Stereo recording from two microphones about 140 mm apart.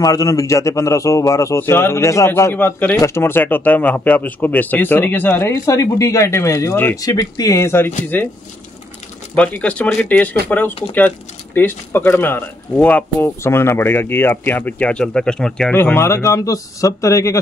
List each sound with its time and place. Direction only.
0.0 s a man's voice: 25° left (ahead or behind)
7.0 s a man's voice: 25° left (ahead or behind)
9.3 s speech: 10° left (ahead or behind)
15.7 s a man's voice: 15° left (ahead or behind)